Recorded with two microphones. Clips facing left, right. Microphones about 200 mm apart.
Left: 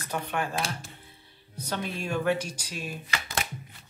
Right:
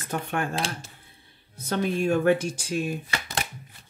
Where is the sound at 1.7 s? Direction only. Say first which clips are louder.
Right 8 dB; 50° right (ahead or behind).